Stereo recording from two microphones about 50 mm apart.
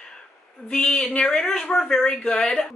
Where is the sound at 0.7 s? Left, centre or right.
Left.